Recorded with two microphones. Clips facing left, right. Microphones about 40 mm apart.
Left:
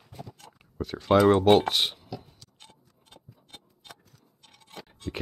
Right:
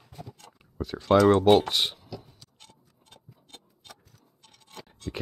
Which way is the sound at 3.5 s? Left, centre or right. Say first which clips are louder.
Left 1 dB; centre.